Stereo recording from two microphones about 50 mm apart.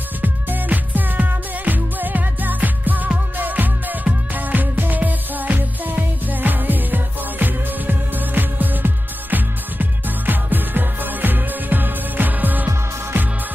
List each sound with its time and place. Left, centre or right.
0.2 s music: right